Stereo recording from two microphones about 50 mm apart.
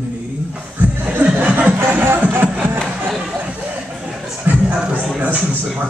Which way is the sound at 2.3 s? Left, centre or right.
Right.